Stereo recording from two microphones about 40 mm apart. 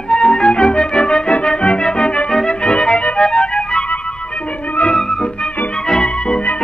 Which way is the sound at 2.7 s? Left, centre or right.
Left.